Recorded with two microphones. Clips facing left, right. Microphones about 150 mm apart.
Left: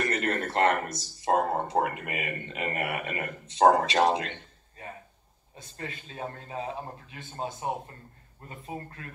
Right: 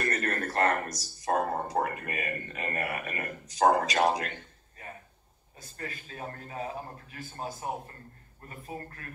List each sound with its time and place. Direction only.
0.1 s speech: 25° left (ahead or behind)